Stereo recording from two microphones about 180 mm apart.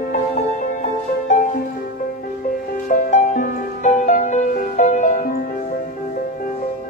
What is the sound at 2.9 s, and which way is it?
Music, 45° left (ahead or behind).